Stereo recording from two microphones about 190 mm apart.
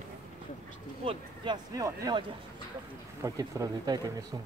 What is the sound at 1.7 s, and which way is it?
Speech, 20° right (ahead or behind).